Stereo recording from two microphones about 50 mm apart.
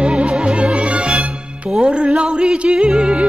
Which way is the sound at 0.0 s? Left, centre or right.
Right.